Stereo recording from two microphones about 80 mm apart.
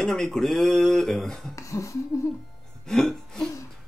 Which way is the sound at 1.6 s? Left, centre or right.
Left.